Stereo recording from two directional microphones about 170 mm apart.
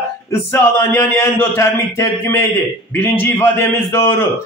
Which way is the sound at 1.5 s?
15° left (ahead or behind).